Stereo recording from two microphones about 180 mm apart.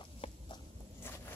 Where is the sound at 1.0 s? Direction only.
10° left (ahead or behind).